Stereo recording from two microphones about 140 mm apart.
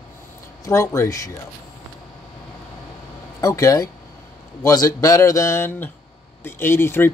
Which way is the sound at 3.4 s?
25° left (ahead or behind).